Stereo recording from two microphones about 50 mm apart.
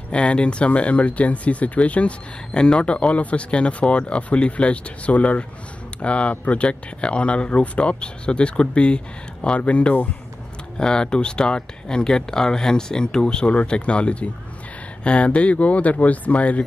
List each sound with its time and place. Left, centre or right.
0.1 s speech: left